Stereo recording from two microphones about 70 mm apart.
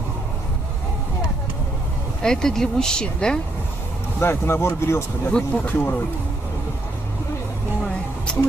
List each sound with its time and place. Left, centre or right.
2.2 s speech: centre
4.2 s speech: left
5.3 s speech: left